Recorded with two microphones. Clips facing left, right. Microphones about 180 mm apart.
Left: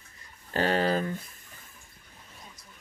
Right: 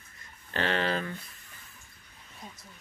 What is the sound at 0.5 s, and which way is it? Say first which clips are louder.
Speech: left 4 dB; 40° left (ahead or behind).